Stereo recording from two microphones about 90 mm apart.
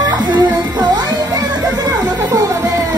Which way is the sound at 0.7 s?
50° right (ahead or behind).